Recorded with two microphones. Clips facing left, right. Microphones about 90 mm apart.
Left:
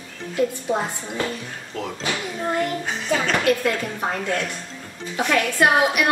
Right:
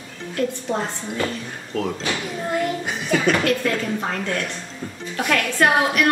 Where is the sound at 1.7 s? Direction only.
Centre (ahead or behind).